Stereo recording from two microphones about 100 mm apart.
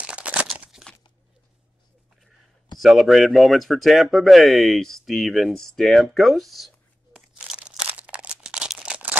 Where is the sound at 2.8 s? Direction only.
Centre (ahead or behind).